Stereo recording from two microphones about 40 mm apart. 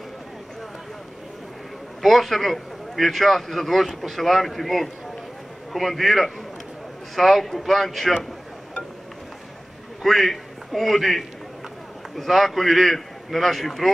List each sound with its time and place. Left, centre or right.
2.0 s speech: centre
10.0 s a man's voice: centre